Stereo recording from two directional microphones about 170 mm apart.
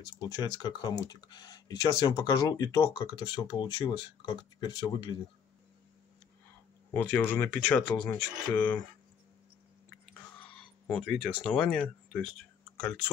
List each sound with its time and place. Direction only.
0.1 s speech: 25° left (ahead or behind)
6.9 s speech: 10° left (ahead or behind)
10.9 s speech: 5° left (ahead or behind)